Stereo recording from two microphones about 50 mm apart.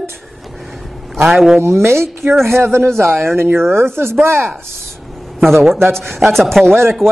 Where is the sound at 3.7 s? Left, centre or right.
Right.